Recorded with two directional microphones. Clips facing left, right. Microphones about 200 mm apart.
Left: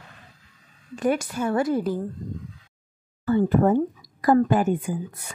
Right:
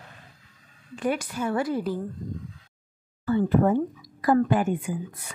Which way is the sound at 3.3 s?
45° left (ahead or behind).